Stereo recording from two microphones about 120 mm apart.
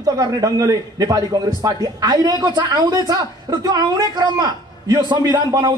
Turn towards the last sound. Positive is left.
turn(degrees=-35)  # may be behind; listen again after turning